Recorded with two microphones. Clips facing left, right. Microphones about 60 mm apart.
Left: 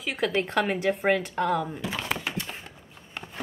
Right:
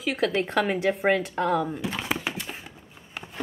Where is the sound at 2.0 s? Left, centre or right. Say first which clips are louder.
Right 1 dB; centre.